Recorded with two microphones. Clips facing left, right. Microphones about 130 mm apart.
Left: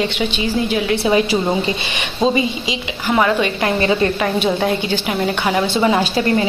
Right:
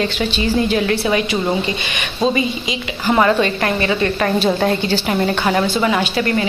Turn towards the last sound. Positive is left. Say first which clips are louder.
# left 2 dB
turn(degrees=25)  # may be behind; listen again after turning